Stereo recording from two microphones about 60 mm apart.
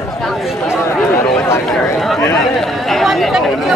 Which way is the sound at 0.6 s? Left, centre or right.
Left.